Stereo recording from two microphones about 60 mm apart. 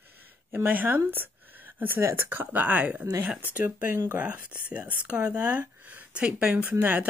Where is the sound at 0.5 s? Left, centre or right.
Right.